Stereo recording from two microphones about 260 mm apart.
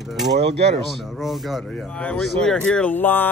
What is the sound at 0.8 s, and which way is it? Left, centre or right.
A man's voice, centre.